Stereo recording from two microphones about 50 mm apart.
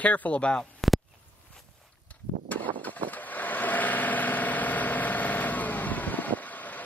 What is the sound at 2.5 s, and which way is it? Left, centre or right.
Vehicle, left.